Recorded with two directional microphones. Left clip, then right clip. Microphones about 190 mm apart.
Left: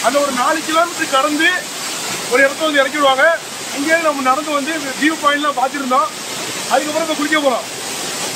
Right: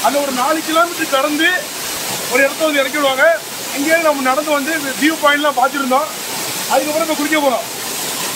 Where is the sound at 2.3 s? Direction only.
5° right (ahead or behind); by 5.9 s 20° right (ahead or behind).